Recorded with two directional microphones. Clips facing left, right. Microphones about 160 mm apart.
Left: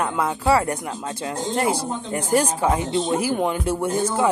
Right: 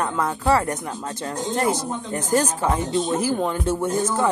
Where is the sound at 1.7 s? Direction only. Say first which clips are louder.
Left 1 dB; 10° left (ahead or behind).